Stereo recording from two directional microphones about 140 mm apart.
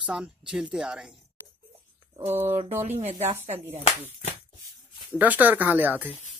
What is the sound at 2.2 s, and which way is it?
Speech, 15° right (ahead or behind).